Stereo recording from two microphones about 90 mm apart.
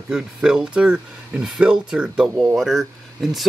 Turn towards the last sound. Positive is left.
turn(degrees=0)  # may be behind; listen again after turning